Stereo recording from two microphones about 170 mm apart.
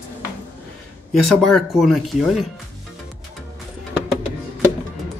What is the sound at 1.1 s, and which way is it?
Speech, centre (ahead or behind).